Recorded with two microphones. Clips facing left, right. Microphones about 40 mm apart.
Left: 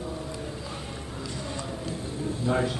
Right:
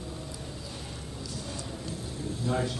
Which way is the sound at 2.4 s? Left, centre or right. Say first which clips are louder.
Left 4 dB; left.